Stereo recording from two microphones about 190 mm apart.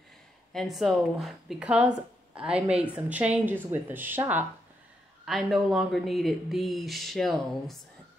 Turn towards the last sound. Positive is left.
turn(degrees=0)  # may be behind; listen again after turning